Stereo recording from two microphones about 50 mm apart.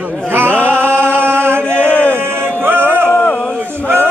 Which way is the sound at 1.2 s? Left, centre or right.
Right.